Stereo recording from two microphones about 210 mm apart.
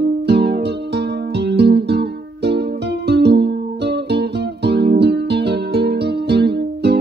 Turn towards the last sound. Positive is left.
turn(degrees=-50)  # may be behind; listen again after turning